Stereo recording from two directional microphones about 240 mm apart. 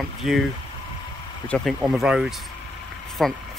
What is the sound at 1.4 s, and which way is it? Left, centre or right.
Speech, centre.